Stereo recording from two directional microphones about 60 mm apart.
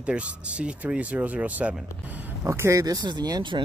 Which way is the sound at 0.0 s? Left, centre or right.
Centre.